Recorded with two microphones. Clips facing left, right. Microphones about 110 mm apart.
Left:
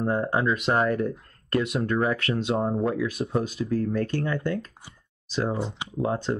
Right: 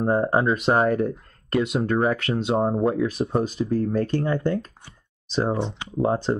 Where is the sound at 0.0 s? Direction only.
35° right (ahead or behind).